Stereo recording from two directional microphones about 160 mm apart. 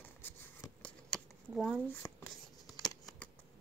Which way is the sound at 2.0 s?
20° left (ahead or behind).